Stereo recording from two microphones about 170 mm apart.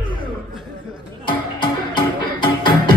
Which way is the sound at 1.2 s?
25° left (ahead or behind).